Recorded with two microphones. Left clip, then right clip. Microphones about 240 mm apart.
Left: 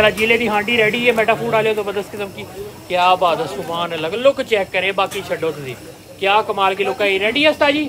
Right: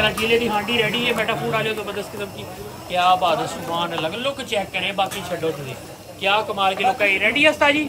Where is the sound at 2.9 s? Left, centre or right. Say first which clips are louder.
Left 3 dB; left.